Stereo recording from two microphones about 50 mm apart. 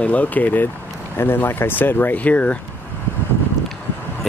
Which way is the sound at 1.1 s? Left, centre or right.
Left.